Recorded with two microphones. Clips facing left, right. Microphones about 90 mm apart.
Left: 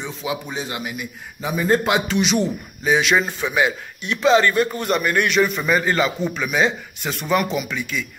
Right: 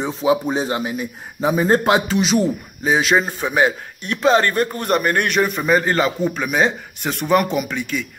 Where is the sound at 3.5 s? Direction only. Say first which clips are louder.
Right 4 dB; 50° right (ahead or behind).